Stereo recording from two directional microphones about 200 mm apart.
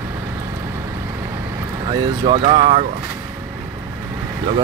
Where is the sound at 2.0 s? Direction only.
30° right (ahead or behind).